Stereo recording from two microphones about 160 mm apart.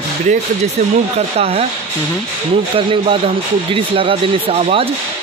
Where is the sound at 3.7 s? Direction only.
35° right (ahead or behind).